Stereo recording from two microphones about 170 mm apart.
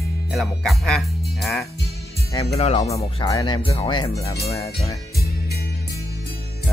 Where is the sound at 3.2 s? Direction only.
25° left (ahead or behind).